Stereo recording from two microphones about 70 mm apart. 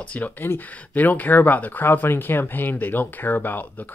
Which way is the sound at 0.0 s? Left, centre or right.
Centre.